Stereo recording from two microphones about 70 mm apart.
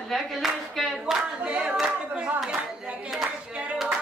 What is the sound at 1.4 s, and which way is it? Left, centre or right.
Clapping, centre.